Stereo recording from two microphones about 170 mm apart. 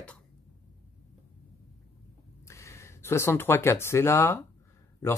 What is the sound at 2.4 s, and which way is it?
Speech, 15° left (ahead or behind).